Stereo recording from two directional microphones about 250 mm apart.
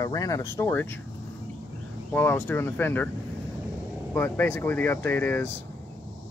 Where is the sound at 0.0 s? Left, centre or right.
Centre.